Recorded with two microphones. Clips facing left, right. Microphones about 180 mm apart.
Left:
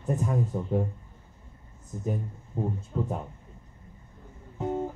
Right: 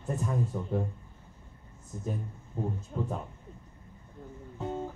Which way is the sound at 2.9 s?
40° left (ahead or behind).